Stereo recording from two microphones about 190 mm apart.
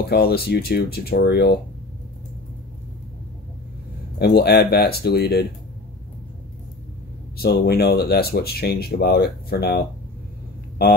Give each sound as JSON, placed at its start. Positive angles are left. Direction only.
{"t": 0.0, "sound": "speech", "side_deg": 55}
{"t": 4.4, "sound": "speech", "side_deg": 55}
{"t": 7.3, "sound": "speech", "side_deg": 55}